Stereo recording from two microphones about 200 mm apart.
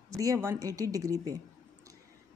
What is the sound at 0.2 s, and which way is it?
A woman's voice, 15° right (ahead or behind).